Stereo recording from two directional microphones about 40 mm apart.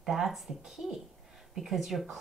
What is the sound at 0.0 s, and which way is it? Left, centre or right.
Speech, centre.